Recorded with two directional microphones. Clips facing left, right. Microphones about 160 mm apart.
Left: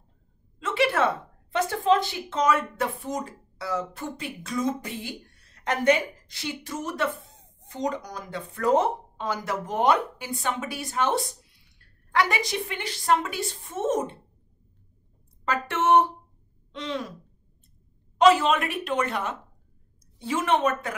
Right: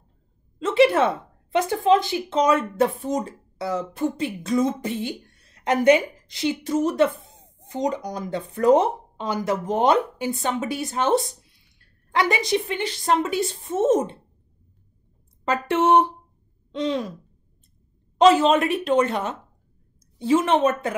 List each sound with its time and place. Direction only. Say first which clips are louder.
0.6 s a sound: right 7 dB; 25° right (ahead or behind)
1.5 s speech: right 4 dB; 15° right (ahead or behind)
15.4 s a woman's voice: right 4 dB; 20° right (ahead or behind)
18.1 s speech: right 3 dB; 25° right (ahead or behind)